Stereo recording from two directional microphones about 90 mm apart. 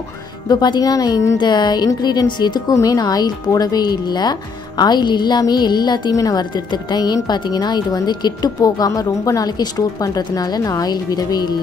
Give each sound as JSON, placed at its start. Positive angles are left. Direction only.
{"t": 0.5, "sound": "a woman's voice", "side_deg": 50}
{"t": 1.4, "sound": "a woman's voice", "side_deg": 50}
{"t": 2.7, "sound": "a woman's voice", "side_deg": 40}
{"t": 6.5, "sound": "a woman's voice", "side_deg": 55}